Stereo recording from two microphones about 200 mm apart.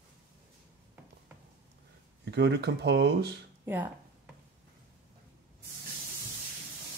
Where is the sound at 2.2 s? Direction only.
60° right (ahead or behind).